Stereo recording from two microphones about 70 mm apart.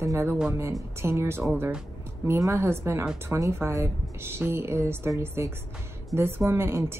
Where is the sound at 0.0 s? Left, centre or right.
Right.